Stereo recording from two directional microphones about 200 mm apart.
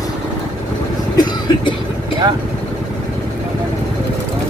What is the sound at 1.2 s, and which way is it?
Cough, 20° left (ahead or behind).